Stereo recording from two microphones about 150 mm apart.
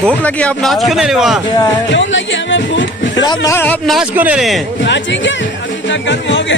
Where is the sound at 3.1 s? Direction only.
30° left (ahead or behind).